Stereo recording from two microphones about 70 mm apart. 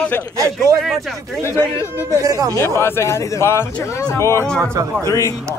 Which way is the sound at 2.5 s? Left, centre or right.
Left.